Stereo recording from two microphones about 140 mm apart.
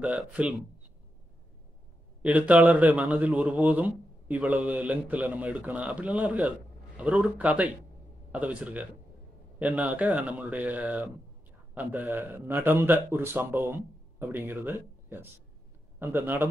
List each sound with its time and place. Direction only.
0.0 s a man's voice: 5° right (ahead or behind)
2.2 s a man's voice: 10° right (ahead or behind)